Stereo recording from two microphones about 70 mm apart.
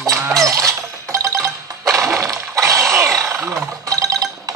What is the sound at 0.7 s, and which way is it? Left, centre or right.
Music, right.